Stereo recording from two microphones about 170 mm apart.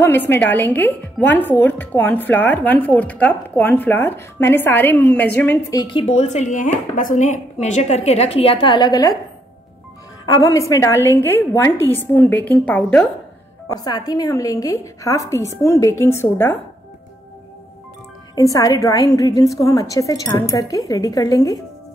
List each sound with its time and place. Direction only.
0.0 s speech: 15° left (ahead or behind)
6.0 s a woman's voice: 45° left (ahead or behind); by 9.1 s 25° left (ahead or behind)
10.2 s speech: 20° left (ahead or behind); by 13.1 s 5° left (ahead or behind)
13.7 s a woman's voice: 20° left (ahead or behind)
18.3 s a woman's voice: 20° left (ahead or behind)